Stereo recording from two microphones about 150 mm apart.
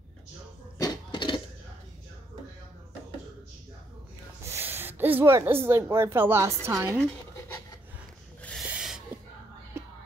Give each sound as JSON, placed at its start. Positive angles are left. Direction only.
{"t": 0.7, "sound": "cough", "side_deg": 30}
{"t": 4.5, "sound": "a sound", "side_deg": -15}
{"t": 5.9, "sound": "a woman's voice", "side_deg": -15}
{"t": 8.4, "sound": "snort", "side_deg": 10}
{"t": 8.6, "sound": "a sound", "side_deg": -5}
{"t": 9.8, "sound": "whispering", "side_deg": -20}